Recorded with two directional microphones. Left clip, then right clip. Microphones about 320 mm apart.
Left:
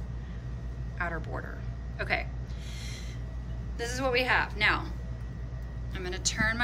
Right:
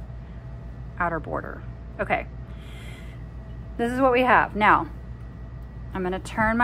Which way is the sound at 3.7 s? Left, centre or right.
Centre.